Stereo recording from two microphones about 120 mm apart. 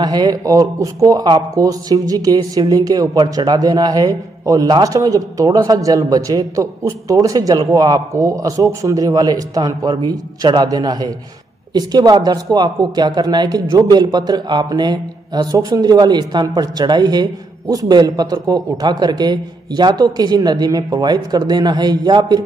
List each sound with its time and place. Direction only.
0.0 s speech: 35° right (ahead or behind)